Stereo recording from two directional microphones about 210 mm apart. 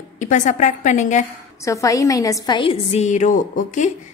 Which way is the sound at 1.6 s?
15° left (ahead or behind).